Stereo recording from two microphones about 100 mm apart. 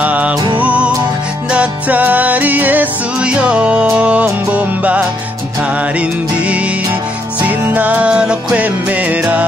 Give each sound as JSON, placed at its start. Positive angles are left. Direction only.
{"t": 0.0, "sound": "music", "side_deg": -15}